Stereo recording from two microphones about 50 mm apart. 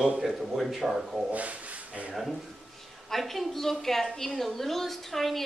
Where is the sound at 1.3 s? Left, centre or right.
Right.